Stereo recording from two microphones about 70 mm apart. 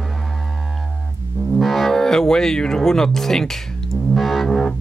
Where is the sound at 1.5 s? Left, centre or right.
Centre.